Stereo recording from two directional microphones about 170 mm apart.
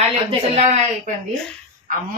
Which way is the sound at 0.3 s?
40° right (ahead or behind).